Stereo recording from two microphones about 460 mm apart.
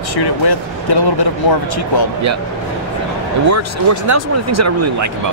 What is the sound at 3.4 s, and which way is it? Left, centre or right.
Speech, right.